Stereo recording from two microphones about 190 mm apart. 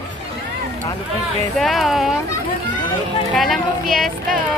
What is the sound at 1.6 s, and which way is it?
Speech, centre (ahead or behind).